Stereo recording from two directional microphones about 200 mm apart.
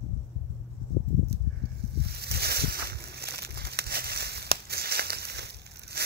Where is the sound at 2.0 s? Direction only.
55° right (ahead or behind).